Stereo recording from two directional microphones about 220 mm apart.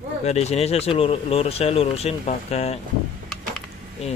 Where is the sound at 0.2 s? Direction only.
30° left (ahead or behind).